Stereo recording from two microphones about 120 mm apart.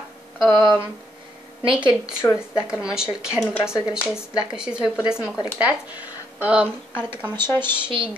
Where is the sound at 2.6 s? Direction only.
10° right (ahead or behind).